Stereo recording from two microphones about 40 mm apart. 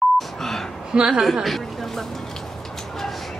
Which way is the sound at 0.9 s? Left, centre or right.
Centre.